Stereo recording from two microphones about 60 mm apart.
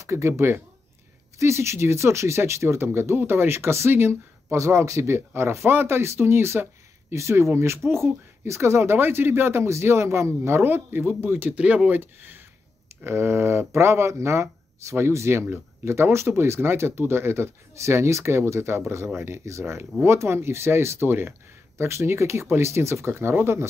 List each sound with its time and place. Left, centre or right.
0.0 s speech: right
10.6 s speech: right
12.0 s speech: right
13.0 s speech: right